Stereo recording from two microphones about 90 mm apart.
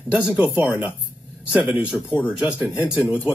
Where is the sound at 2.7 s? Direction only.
15° right (ahead or behind).